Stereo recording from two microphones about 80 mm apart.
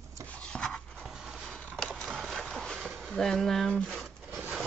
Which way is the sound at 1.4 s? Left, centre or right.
Centre.